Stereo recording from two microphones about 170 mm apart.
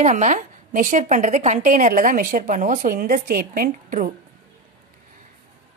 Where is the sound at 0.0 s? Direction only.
45° right (ahead or behind).